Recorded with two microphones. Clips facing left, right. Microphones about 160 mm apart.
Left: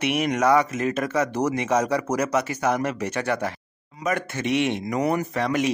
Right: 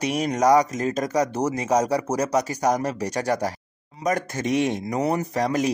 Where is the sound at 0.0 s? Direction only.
35° right (ahead or behind).